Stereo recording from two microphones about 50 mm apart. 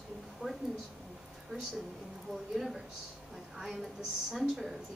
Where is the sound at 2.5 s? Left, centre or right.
Centre.